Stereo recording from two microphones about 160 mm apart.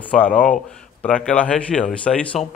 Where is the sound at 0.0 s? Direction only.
10° left (ahead or behind).